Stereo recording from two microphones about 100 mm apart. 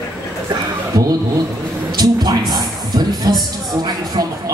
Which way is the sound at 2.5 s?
45° right (ahead or behind).